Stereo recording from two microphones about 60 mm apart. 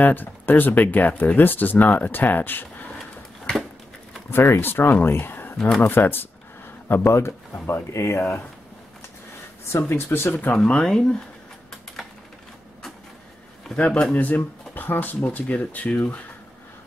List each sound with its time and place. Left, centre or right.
0.0 s speech: left
4.3 s speech: left
9.7 s speech: left
10.5 s speech: centre
14.1 s speech: left